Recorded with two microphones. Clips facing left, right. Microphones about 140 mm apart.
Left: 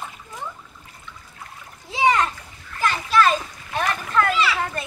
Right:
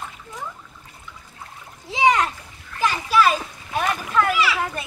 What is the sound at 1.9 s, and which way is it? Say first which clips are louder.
Splash: right 1 dB; 15° right (ahead or behind).